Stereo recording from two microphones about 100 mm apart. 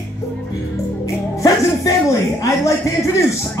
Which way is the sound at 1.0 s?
35° left (ahead or behind).